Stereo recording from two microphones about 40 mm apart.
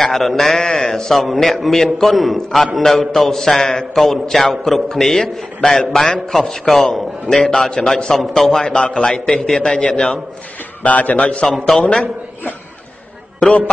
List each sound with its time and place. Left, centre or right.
0.0 s a man's voice: centre
0.6 s a man's voice: centre
1.1 s a man's voice: centre
8.6 s a man's voice: left
10.8 s a man's voice: left
11.7 s a man's voice: centre